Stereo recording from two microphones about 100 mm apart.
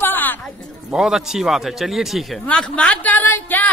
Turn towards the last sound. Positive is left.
turn(degrees=20)  # may be behind; listen again after turning